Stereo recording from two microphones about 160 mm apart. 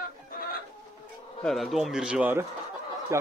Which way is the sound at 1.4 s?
Centre (ahead or behind).